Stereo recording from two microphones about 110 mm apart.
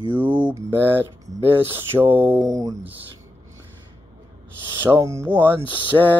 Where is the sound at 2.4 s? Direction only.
35° right (ahead or behind).